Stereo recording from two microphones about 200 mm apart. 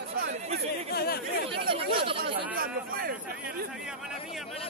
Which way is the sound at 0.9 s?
50° left (ahead or behind).